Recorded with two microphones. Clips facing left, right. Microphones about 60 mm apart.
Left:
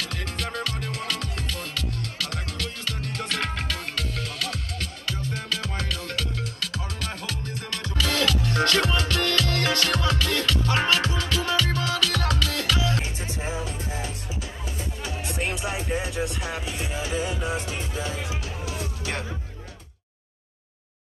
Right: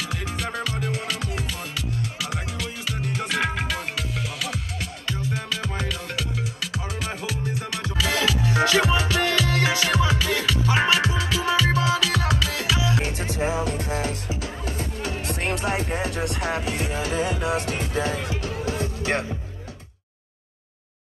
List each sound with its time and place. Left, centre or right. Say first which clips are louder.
0.0 s music: right 2 dB; centre
13.0 s music: right 6 dB; right
14.8 s music: right 2 dB; right
18.4 s music: right 6 dB; right